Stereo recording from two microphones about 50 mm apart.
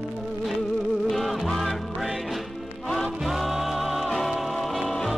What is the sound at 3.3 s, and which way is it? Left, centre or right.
Music, centre.